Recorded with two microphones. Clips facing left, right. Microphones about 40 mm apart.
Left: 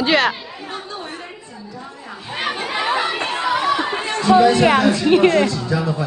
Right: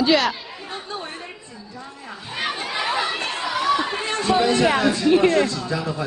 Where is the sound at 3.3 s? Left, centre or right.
Centre.